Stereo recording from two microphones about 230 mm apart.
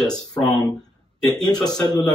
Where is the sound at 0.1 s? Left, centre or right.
Centre.